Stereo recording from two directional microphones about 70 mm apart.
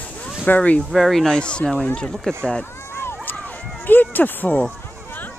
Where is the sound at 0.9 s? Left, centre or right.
Centre.